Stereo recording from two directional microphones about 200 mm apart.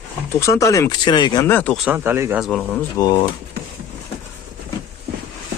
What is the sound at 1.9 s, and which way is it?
Speech, 10° right (ahead or behind).